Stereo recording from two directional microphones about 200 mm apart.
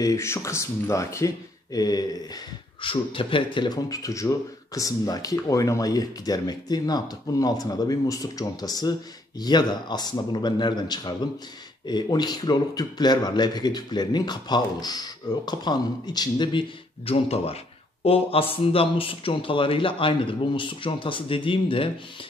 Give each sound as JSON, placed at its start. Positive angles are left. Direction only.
{"t": 0.0, "sound": "speech", "side_deg": 15}